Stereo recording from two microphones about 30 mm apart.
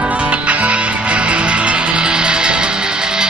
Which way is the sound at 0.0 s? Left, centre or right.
Right.